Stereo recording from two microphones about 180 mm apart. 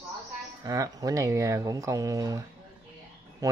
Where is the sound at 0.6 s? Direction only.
20° right (ahead or behind).